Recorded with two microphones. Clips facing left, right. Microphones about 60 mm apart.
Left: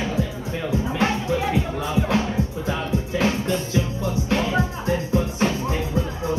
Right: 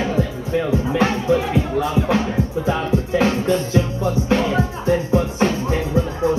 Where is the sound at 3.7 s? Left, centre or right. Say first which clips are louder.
Right 5 dB; right.